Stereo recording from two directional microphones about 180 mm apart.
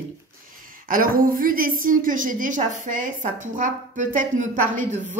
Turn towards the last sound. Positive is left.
turn(degrees=-45)  # may be behind; listen again after turning